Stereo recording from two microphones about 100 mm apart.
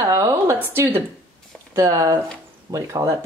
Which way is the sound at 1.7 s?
30° right (ahead or behind).